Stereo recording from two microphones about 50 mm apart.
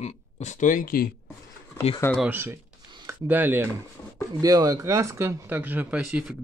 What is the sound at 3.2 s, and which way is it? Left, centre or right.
Speech, right.